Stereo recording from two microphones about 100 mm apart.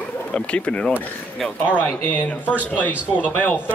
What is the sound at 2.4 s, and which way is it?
Speech, 15° right (ahead or behind).